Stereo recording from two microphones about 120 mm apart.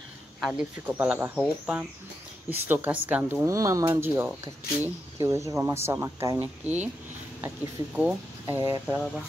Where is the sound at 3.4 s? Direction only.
25° right (ahead or behind).